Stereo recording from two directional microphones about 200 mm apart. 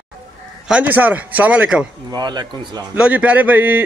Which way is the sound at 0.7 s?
5° right (ahead or behind).